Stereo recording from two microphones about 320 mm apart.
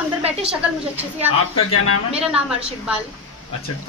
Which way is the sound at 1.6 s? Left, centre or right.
Left.